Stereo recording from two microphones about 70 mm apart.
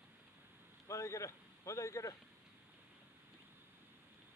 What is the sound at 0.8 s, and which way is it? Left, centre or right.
A man's voice, left.